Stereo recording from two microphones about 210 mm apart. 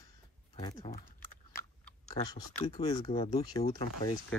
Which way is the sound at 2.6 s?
20° left (ahead or behind).